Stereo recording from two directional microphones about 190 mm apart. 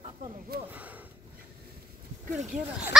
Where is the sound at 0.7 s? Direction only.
10° right (ahead or behind).